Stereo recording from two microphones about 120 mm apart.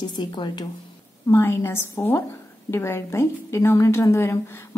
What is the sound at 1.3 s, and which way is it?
A woman's voice, 25° left (ahead or behind).